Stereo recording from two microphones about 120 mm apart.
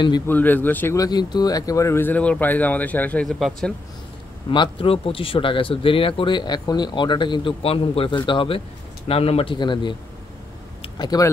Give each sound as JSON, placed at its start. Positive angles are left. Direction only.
{"t": 0.3, "sound": "speech", "side_deg": 15}
{"t": 0.9, "sound": "speech", "side_deg": 35}
{"t": 3.3, "sound": "speech", "side_deg": 0}
{"t": 4.5, "sound": "speech", "side_deg": 45}
{"t": 11.0, "sound": "speech", "side_deg": 35}